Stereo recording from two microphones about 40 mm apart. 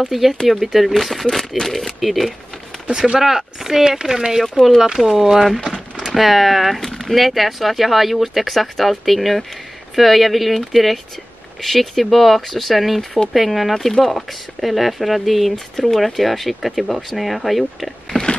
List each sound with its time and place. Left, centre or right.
0.1 s speech: centre
2.9 s speech: centre
6.8 s speech: centre
18.1 s a sound: left